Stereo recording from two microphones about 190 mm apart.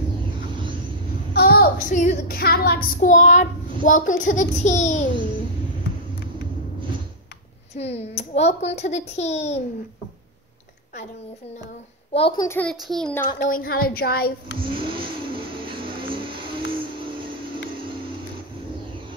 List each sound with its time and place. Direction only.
1.3 s a sound: 55° left (ahead or behind)
2.4 s a child's voice: 55° left (ahead or behind); by 5.0 s 40° left (ahead or behind)
7.7 s a child's voice: 35° left (ahead or behind)
12.1 s a child's voice: 30° left (ahead or behind)
12.4 s a child's voice: 5° left (ahead or behind)
13.4 s a child's voice: 45° left (ahead or behind)
14.6 s vehicle: 25° right (ahead or behind)